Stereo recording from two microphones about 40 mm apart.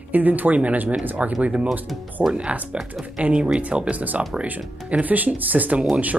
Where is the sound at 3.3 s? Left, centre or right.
Right.